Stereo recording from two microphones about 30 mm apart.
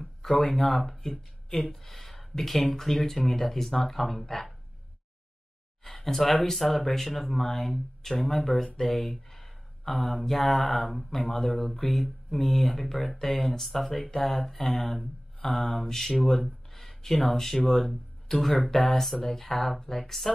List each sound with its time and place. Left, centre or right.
0.0 s speech: centre
1.9 s speech: centre
5.9 s speech: centre
16.3 s a sound: centre
17.3 s speech: centre